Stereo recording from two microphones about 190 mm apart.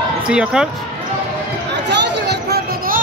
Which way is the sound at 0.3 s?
5° right (ahead or behind).